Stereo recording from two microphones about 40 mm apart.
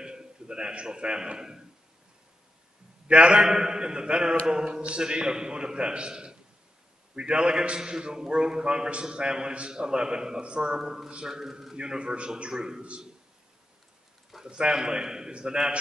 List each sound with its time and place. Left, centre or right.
0.0 s a man's voice: centre
3.1 s a man's voice: right
10.8 s a man's voice: centre
11.7 s a man's voice: right
14.4 s a man's voice: centre